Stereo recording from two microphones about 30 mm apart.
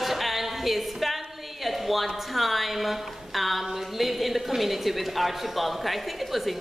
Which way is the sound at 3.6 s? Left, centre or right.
Centre.